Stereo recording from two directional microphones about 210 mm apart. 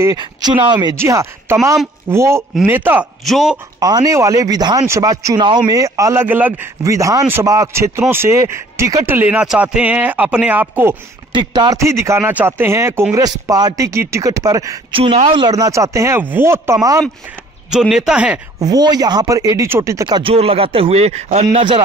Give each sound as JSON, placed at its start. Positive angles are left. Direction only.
{"t": 0.0, "sound": "speech", "side_deg": -20}
{"t": 3.8, "sound": "speech", "side_deg": -15}
{"t": 11.3, "sound": "speech", "side_deg": -20}
{"t": 17.6, "sound": "speech", "side_deg": 0}
{"t": 18.6, "sound": "speech", "side_deg": -20}